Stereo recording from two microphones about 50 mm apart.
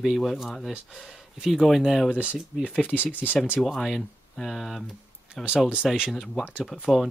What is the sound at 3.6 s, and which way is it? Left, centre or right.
Speech, centre.